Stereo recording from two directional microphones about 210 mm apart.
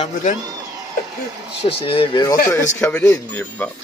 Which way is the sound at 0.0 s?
35° left (ahead or behind).